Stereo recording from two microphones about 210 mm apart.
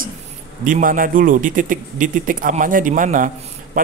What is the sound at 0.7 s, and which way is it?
A man's voice, 40° right (ahead or behind).